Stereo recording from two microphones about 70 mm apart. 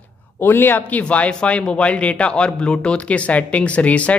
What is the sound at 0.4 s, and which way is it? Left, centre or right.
Speech, left.